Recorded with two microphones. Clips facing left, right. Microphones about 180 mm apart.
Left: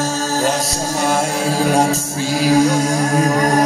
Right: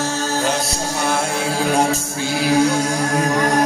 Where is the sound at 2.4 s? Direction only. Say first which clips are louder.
Left 3 dB; 40° left (ahead or behind).